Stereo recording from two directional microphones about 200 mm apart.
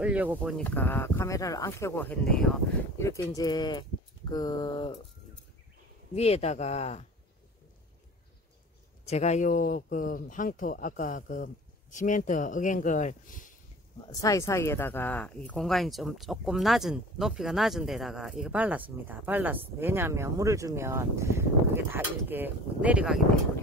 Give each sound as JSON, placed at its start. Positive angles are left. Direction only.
{"t": 0.0, "sound": "speech", "side_deg": -5}
{"t": 0.6, "sound": "speech", "side_deg": 10}
{"t": 6.1, "sound": "speech", "side_deg": 30}
{"t": 9.0, "sound": "speech", "side_deg": 35}
{"t": 14.0, "sound": "speech", "side_deg": 20}